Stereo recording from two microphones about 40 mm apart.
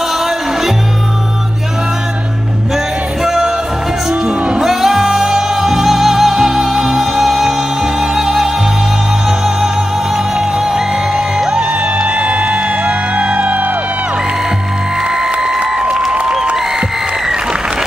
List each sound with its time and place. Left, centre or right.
3.3 s music: centre
4.1 s music: right
4.6 s music: centre
10.1 s music: centre; by 13.7 s right
15.1 s music: centre
15.6 s applause: centre